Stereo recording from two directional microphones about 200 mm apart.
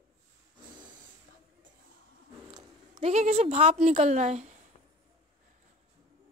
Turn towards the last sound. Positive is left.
turn(degrees=-35)  # may be behind; listen again after turning